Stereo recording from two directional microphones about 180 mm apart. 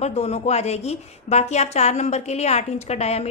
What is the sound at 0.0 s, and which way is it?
A woman's voice, 35° left (ahead or behind).